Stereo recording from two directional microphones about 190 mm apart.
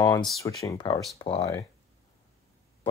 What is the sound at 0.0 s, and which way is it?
Speech, 15° left (ahead or behind).